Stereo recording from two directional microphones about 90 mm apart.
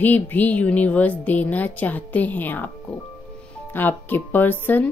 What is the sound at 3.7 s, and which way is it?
Speech, 20° left (ahead or behind).